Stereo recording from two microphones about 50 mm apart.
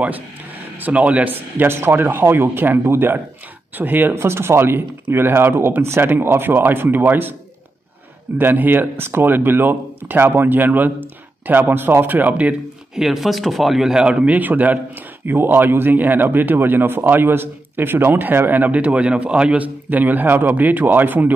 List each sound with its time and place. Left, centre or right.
0.7 s speech: right
1.6 s speech: right
3.7 s a man's voice: right
4.1 s speech: right
8.4 s speech: right
12.9 s speech: centre
14.0 s a man's voice: right